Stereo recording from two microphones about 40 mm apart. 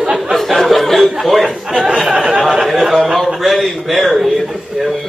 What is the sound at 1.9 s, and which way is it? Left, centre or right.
A man's voice, centre.